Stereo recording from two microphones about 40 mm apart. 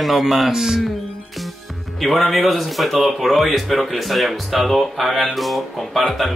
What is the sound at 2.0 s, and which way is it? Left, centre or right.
Speech, centre.